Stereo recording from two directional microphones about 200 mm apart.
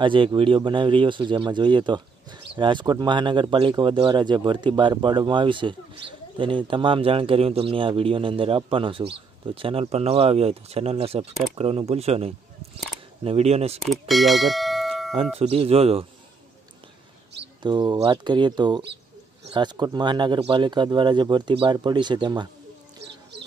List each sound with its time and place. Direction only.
0.0 s speech: 25° right (ahead or behind)
13.7 s speech: centre (ahead or behind)
15.3 s speech: 30° right (ahead or behind)
17.6 s speech: 20° right (ahead or behind)